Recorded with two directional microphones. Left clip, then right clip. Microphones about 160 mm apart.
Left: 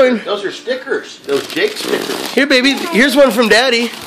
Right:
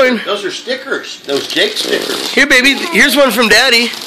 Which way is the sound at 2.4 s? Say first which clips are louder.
Right 3 dB; 10° left (ahead or behind).